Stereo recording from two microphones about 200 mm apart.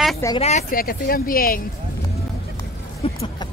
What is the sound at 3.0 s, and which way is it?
Vehicle, 25° left (ahead or behind).